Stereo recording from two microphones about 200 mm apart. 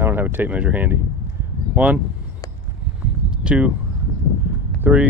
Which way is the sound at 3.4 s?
5° right (ahead or behind).